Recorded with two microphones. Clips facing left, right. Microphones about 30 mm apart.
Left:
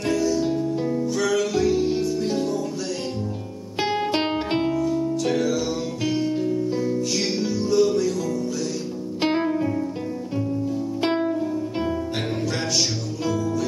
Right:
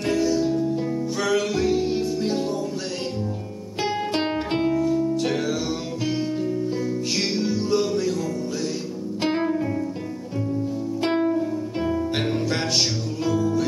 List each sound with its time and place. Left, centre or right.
0.1 s music: centre
0.4 s music: centre
1.1 s music: centre
3.8 s music: centre
4.7 s music: centre
7.3 s music: centre
9.2 s music: centre
11.0 s music: centre
13.2 s music: centre